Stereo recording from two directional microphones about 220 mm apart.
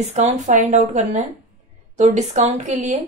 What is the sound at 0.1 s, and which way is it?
A woman's voice, 30° right (ahead or behind).